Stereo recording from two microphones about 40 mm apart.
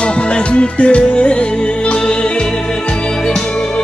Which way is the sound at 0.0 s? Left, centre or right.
Left.